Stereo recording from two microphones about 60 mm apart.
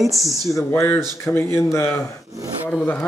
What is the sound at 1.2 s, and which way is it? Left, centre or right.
Speech, left.